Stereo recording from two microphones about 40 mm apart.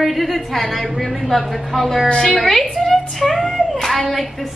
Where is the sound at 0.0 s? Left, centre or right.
Centre.